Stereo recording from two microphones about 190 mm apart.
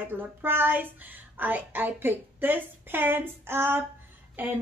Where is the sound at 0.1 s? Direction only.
10° right (ahead or behind).